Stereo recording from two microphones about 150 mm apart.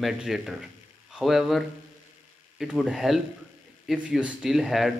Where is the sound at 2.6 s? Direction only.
5° right (ahead or behind).